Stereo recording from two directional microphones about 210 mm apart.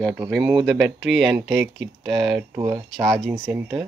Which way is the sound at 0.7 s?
60° right (ahead or behind).